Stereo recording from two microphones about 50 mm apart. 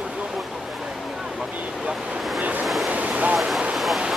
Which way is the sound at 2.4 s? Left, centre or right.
Right.